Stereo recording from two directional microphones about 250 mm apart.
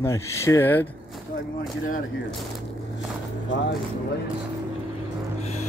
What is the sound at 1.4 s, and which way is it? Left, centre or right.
Speech, left.